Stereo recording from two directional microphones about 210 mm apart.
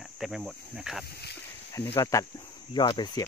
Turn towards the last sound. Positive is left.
turn(degrees=20)  # may be behind; listen again after turning